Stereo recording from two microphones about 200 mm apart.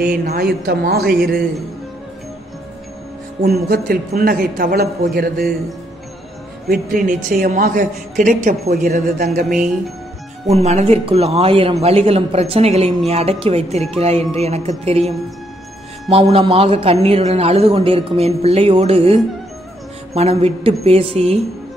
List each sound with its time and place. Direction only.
0.0 s a man's voice: 45° right (ahead or behind)
3.4 s a man's voice: 50° right (ahead or behind)
6.7 s a man's voice: 45° right (ahead or behind)
8.5 s a man's voice: 50° right (ahead or behind)
10.5 s a man's voice: 35° right (ahead or behind)
20.2 s speech: 30° right (ahead or behind)